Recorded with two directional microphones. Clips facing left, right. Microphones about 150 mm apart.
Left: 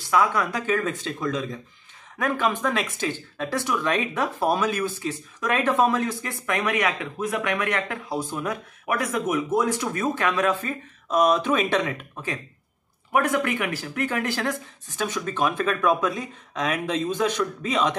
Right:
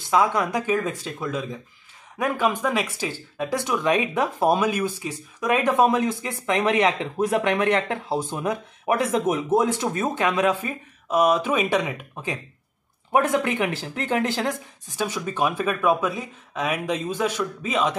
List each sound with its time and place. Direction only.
0.1 s speech: 20° right (ahead or behind); by 17.9 s 5° right (ahead or behind)